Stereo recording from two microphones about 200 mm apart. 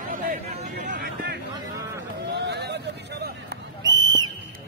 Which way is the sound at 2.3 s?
60° right (ahead or behind).